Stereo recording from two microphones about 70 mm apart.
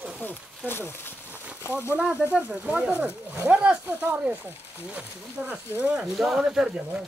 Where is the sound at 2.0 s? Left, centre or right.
Centre.